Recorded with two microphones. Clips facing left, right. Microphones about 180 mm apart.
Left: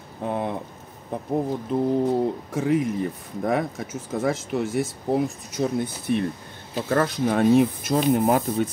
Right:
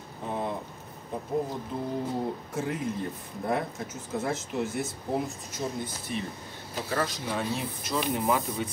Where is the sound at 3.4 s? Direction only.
90° left.